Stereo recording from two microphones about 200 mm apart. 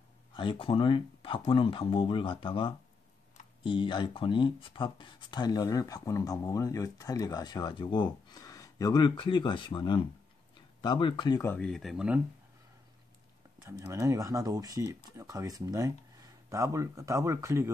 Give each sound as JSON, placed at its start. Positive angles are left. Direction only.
{"t": 0.3, "sound": "speech", "side_deg": 25}
{"t": 11.5, "sound": "speech", "side_deg": 5}
{"t": 13.6, "sound": "speech", "side_deg": -15}